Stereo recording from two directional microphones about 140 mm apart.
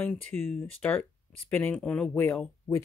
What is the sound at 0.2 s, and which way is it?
Speech, 15° left (ahead or behind).